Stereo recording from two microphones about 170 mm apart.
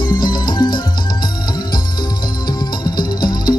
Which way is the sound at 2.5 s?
25° left (ahead or behind).